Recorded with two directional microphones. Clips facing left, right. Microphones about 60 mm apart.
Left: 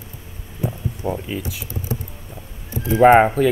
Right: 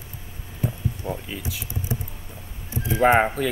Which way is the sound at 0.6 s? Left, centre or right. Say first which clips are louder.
Left 4 dB; centre.